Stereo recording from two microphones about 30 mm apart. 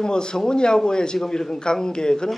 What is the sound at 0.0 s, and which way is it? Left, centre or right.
Speech, left.